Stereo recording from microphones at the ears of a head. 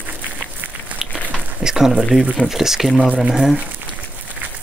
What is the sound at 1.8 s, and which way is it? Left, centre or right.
Speech, centre.